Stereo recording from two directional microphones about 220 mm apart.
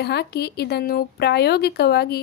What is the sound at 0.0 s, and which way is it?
A woman's voice, 50° left (ahead or behind).